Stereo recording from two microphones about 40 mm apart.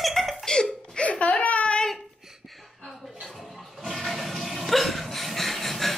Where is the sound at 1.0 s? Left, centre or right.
Left.